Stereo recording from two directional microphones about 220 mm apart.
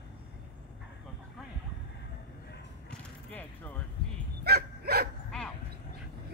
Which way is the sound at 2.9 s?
5° left (ahead or behind).